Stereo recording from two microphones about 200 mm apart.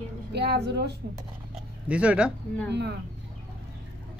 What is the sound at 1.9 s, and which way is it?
Speech, 5° right (ahead or behind).